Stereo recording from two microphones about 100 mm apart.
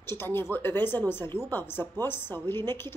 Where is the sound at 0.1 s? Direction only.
20° left (ahead or behind).